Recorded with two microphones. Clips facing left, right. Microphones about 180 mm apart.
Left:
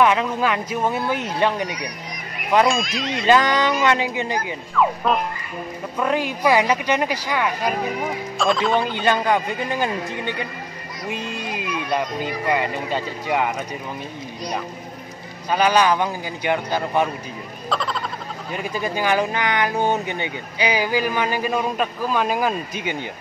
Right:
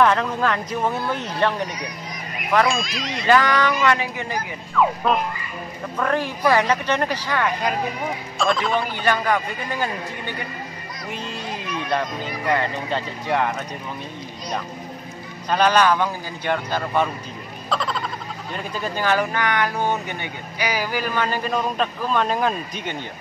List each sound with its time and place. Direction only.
0.0 s speech: 10° left (ahead or behind)
2.7 s speech: centre (ahead or behind)
3.3 s speech: 20° left (ahead or behind)
4.7 s speech: centre (ahead or behind)
5.9 s speech: 15° left (ahead or behind)
8.4 s speech: centre (ahead or behind)
8.9 s speech: 20° left (ahead or behind)
11.7 s speech: 10° left (ahead or behind)
15.5 s speech: 10° left (ahead or behind)
17.6 s frog: centre (ahead or behind)
18.8 s speech: 15° left (ahead or behind)